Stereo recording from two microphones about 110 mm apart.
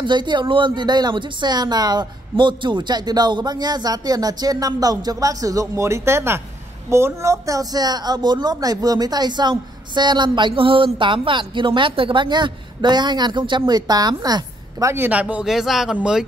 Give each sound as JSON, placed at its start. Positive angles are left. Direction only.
{"t": 0.0, "sound": "speech", "side_deg": -45}
{"t": 15.0, "sound": "speech", "side_deg": -10}